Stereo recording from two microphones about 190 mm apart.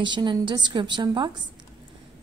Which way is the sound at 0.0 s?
25° right (ahead or behind).